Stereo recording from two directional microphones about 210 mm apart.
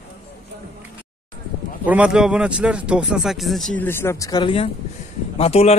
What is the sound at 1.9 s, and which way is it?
A man's voice, 5° right (ahead or behind).